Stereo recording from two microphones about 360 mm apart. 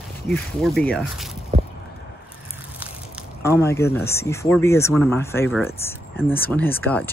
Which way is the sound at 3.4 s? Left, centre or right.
Centre.